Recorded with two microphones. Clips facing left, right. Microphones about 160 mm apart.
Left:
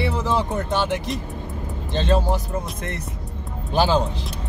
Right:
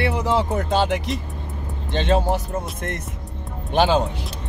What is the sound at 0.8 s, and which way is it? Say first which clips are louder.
Speech: right 2 dB; 70° right (ahead or behind).